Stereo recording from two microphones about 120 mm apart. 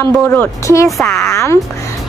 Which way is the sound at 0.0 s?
20° left (ahead or behind).